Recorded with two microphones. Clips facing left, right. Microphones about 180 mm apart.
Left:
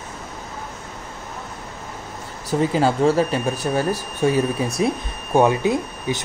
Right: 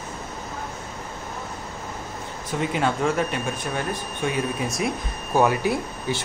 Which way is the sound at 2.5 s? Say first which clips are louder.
Left 5 dB; 35° left (ahead or behind).